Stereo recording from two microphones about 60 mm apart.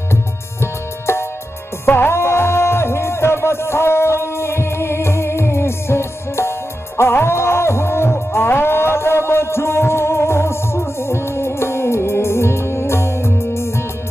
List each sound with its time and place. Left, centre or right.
0.1 s music: left